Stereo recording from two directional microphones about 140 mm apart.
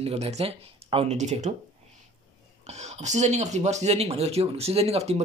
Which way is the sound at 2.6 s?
55° right (ahead or behind).